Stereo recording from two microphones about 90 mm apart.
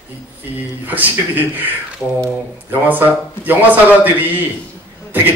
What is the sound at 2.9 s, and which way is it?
A woman's voice, 20° right (ahead or behind).